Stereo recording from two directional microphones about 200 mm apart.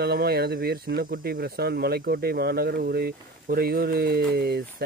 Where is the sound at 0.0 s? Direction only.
50° right (ahead or behind).